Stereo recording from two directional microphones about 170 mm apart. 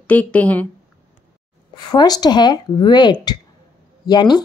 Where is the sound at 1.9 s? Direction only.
25° left (ahead or behind).